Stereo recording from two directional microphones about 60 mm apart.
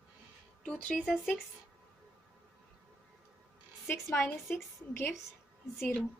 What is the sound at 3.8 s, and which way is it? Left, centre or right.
A woman's voice, left.